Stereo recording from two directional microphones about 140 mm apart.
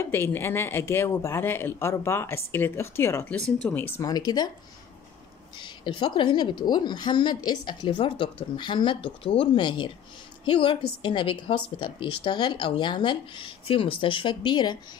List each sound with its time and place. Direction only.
0.0 s speech: 15° left (ahead or behind)
4.0 s speech: 30° left (ahead or behind)
5.6 s a woman's voice: 35° left (ahead or behind)